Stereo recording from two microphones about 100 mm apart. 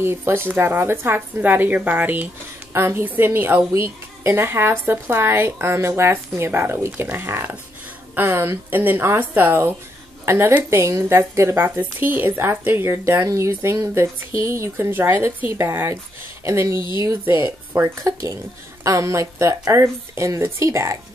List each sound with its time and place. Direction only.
0.0 s a woman's voice: 25° right (ahead or behind)